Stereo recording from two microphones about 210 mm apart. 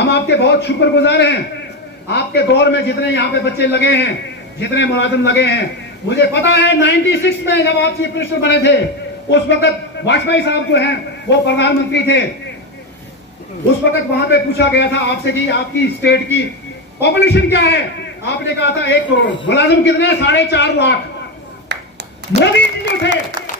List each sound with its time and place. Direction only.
0.0 s a man's voice: 55° left (ahead or behind)
14.3 s a man's voice: 55° left (ahead or behind)
22.4 s a man's voice: 55° left (ahead or behind)